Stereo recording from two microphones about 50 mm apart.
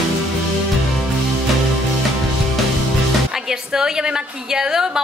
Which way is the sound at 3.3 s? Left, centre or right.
Centre.